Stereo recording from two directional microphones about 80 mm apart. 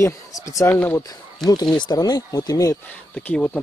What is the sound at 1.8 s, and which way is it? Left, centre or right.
Speech, left.